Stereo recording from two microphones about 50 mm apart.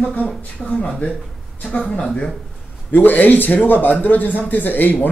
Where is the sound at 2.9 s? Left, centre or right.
Left.